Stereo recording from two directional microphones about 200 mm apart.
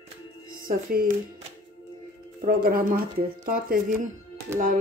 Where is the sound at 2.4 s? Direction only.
45° right (ahead or behind).